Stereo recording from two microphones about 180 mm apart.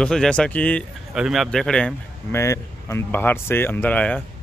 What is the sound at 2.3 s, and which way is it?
Speech, 15° left (ahead or behind).